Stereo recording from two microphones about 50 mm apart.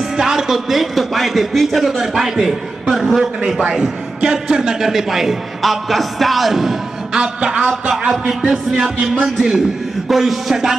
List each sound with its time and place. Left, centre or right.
0.2 s a man's voice: centre
3.6 s a man's voice: centre
7.2 s a man's voice: right
8.3 s a man's voice: centre